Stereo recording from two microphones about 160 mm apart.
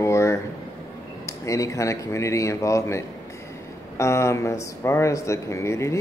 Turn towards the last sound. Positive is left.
turn(degrees=15)  # may be behind; listen again after turning